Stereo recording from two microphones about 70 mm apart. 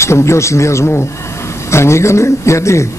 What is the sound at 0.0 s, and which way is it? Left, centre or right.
A man's voice, left.